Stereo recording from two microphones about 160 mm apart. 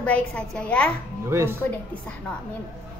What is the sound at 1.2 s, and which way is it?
Speech, 15° right (ahead or behind).